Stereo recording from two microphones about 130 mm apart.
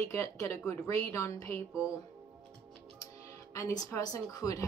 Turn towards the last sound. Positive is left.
turn(degrees=25)  # may be behind; listen again after turning